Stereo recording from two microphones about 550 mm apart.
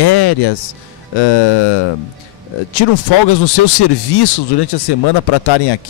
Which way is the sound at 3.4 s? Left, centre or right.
Left.